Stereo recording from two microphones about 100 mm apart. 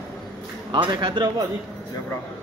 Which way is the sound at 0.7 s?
55° right (ahead or behind).